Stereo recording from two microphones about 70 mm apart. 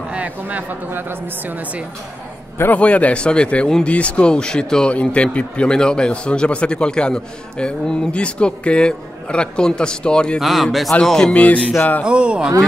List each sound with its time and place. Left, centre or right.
0.1 s a woman's voice: right
2.6 s speech: left
10.4 s a man's voice: centre
11.3 s music: left
12.0 s speech: centre